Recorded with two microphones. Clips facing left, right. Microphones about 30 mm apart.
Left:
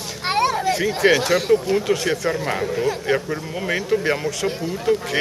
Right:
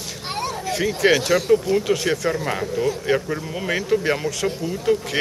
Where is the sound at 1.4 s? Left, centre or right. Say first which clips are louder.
Even; left.